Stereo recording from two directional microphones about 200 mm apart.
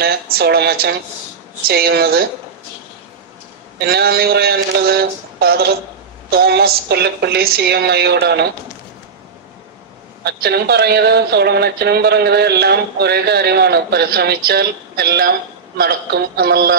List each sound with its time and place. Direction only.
0.0 s speech: 50° right (ahead or behind)
3.9 s speech: 50° right (ahead or behind)
10.2 s speech: 55° right (ahead or behind)